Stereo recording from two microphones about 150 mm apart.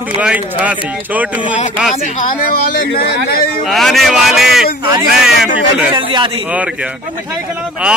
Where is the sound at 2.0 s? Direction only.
55° left (ahead or behind).